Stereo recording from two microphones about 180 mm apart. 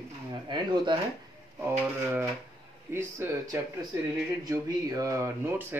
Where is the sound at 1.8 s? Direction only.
10° right (ahead or behind).